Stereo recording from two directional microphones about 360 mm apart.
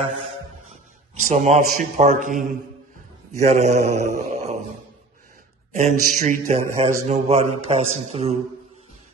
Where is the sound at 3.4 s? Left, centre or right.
Centre.